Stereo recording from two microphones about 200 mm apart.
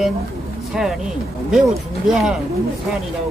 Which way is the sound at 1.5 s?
Centre (ahead or behind).